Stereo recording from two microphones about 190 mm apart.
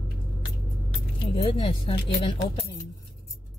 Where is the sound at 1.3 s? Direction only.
30° left (ahead or behind).